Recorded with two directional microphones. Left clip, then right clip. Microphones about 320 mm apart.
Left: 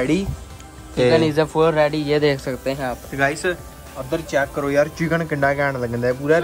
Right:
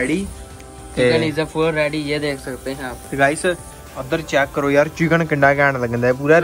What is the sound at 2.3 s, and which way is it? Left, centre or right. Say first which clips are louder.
Speech: left 3 dB; left.